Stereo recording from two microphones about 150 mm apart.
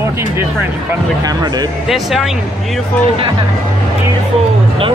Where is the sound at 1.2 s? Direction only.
25° right (ahead or behind).